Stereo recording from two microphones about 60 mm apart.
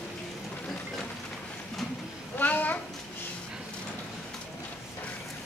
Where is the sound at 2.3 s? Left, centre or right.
Left.